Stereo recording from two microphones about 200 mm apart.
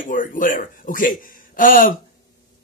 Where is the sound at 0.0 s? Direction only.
40° left (ahead or behind).